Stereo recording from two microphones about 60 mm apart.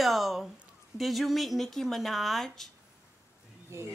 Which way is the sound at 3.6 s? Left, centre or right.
Right.